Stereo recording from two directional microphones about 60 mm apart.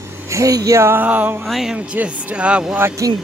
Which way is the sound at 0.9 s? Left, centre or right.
Right.